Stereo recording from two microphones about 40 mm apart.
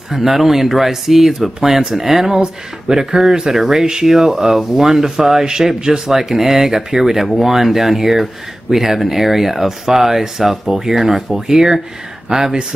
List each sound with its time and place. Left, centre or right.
0.1 s speech: centre